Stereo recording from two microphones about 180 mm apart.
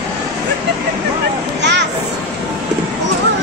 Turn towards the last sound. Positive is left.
turn(degrees=-75)  # may be behind; listen again after turning